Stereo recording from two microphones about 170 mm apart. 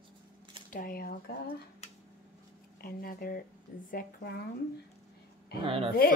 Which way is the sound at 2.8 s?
60° left (ahead or behind).